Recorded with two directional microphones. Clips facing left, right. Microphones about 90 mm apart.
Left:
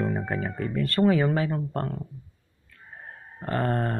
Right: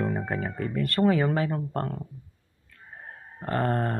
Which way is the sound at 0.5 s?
30° right (ahead or behind).